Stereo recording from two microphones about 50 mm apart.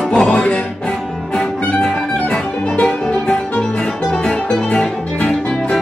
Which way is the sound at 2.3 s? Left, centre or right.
Left.